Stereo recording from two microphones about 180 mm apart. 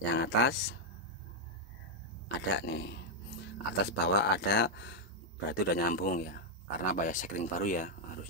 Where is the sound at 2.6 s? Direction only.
65° left (ahead or behind).